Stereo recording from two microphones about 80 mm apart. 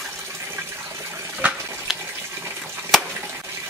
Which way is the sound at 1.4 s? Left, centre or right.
Centre.